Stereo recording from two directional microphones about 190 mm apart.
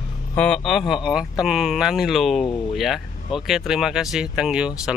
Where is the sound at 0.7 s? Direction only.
Centre (ahead or behind).